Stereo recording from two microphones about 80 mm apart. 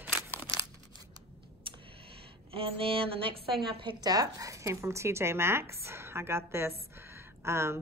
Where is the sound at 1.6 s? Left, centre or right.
Right.